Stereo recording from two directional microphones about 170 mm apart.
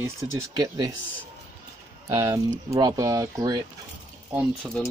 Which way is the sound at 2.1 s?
20° right (ahead or behind).